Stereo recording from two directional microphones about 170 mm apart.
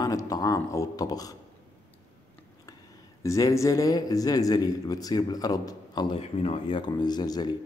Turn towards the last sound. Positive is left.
turn(degrees=25)  # may be behind; listen again after turning